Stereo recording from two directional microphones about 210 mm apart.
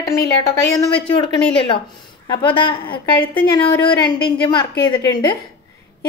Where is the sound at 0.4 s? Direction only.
20° left (ahead or behind).